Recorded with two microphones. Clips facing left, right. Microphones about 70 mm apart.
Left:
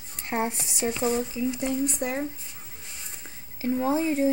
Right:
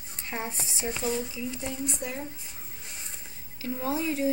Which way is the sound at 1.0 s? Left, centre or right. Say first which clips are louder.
Left 4 dB; left.